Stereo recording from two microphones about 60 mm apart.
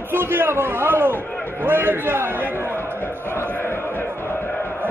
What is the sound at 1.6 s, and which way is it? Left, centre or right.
A man's voice, right.